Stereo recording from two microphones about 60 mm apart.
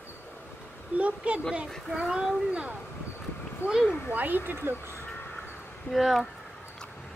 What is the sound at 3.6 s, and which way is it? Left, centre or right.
Speech, left.